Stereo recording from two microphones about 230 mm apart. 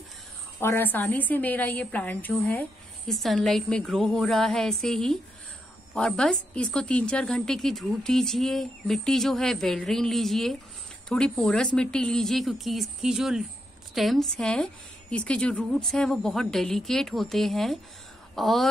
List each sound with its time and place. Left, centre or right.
0.6 s a woman's voice: centre